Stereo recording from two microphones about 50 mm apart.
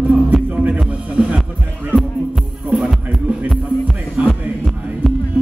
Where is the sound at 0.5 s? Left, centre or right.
Right.